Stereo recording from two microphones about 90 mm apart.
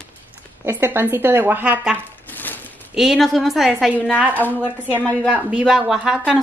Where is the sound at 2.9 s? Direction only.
5° right (ahead or behind).